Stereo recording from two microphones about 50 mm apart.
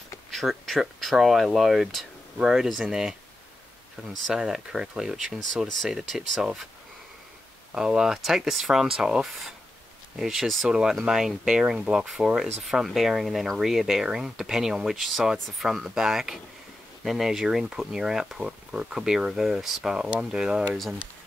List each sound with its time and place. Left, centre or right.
0.3 s speech: centre
4.3 s speech: centre
7.7 s speech: centre